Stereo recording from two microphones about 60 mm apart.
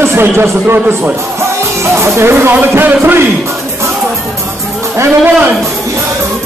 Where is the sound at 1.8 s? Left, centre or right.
Right.